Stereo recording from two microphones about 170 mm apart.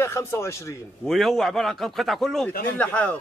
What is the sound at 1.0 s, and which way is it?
A man's voice, centre (ahead or behind).